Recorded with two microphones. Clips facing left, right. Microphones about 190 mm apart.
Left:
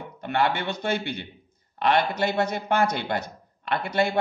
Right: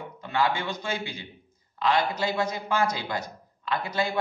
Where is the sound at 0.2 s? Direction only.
60° left (ahead or behind).